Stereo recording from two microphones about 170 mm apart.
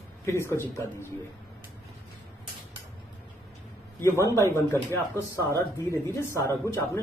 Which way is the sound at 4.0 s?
15° left (ahead or behind).